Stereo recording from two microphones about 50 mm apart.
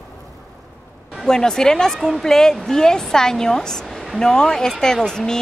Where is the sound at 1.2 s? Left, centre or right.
Centre.